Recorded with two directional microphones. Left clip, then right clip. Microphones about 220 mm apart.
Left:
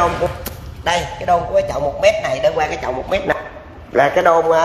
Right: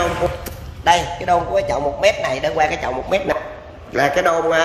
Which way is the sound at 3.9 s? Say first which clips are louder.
Left 3 dB; 20° right (ahead or behind).